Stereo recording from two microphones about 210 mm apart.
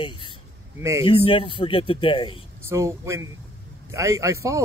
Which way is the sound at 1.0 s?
25° left (ahead or behind).